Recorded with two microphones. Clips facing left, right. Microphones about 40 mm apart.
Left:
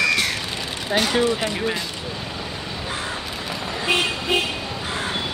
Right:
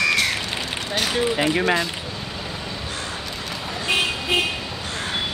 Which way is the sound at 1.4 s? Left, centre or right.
Right.